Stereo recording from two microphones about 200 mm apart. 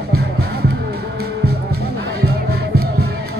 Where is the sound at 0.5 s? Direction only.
55° right (ahead or behind).